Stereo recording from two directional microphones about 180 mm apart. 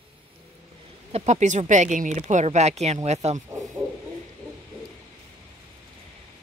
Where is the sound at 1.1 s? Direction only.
40° right (ahead or behind).